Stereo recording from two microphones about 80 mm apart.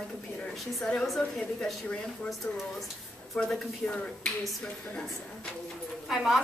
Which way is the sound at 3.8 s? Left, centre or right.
Centre.